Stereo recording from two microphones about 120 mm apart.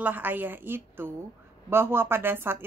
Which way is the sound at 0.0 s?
15° right (ahead or behind).